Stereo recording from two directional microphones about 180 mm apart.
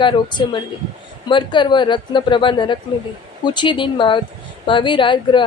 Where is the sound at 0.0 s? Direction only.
25° left (ahead or behind).